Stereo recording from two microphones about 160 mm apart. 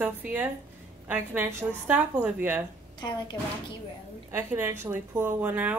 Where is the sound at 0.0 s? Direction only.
10° right (ahead or behind).